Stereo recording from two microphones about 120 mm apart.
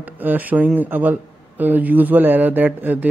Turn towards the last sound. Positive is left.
turn(degrees=-15)  # may be behind; listen again after turning